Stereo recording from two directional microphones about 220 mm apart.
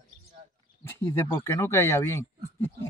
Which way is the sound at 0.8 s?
10° left (ahead or behind).